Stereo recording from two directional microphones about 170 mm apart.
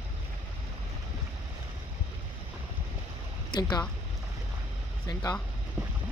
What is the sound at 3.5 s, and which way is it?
Speech, 25° left (ahead or behind).